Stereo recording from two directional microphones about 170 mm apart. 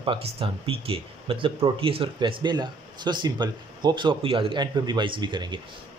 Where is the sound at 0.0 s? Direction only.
30° right (ahead or behind).